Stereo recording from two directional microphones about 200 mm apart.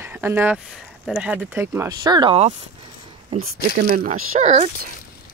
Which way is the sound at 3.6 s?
45° right (ahead or behind).